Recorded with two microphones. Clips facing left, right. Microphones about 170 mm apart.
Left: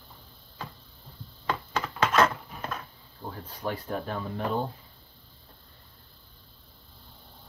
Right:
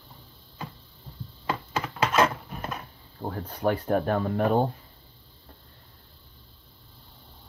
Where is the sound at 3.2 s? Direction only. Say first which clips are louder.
Right 7 dB; 55° right (ahead or behind).